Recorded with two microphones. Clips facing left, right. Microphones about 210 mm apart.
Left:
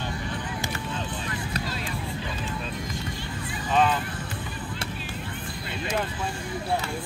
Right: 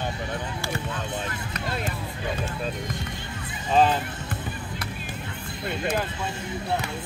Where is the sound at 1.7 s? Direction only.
50° right (ahead or behind).